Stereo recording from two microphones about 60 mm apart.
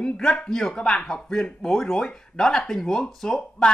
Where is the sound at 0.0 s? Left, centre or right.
Centre.